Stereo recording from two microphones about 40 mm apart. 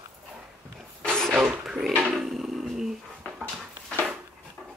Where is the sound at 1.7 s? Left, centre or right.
Centre.